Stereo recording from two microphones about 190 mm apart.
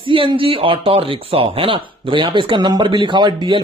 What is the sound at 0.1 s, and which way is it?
Speech, 30° right (ahead or behind).